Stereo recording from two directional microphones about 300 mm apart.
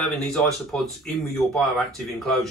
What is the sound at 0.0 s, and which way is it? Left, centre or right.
Speech, centre.